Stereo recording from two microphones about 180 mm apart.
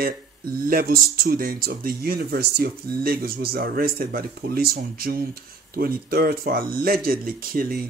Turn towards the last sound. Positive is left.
turn(degrees=-55)  # may be behind; listen again after turning